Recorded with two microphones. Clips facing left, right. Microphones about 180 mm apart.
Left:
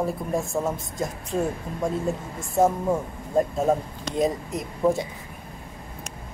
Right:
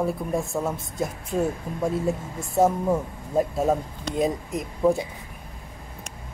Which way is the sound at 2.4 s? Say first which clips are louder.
Even; 20° right (ahead or behind).